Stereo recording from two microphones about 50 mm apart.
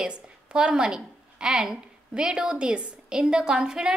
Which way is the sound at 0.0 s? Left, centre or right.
Centre.